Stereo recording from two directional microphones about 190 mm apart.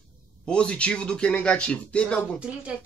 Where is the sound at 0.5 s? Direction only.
5° left (ahead or behind).